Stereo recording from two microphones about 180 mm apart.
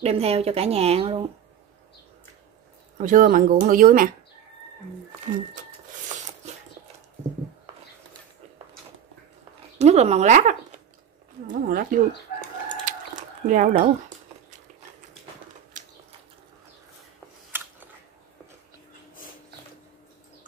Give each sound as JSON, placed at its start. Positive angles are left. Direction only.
{"t": 0.0, "sound": "speech", "side_deg": -35}
{"t": 3.0, "sound": "speech", "side_deg": -50}
{"t": 9.8, "sound": "speech", "side_deg": -35}
{"t": 12.4, "sound": "chicken", "side_deg": -45}
{"t": 15.8, "sound": "a sound", "side_deg": -45}
{"t": 17.5, "sound": "biting", "side_deg": -10}